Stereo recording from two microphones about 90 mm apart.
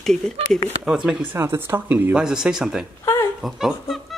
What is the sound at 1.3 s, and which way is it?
A woman's voice, 25° right (ahead or behind).